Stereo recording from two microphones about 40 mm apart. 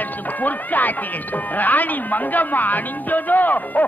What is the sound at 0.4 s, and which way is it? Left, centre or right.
Speech, left.